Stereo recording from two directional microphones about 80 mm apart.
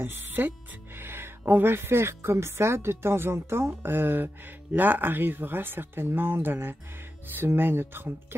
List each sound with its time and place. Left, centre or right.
0.0 s speech: right